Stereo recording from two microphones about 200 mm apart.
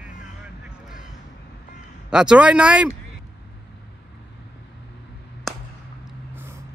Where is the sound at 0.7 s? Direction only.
Centre (ahead or behind).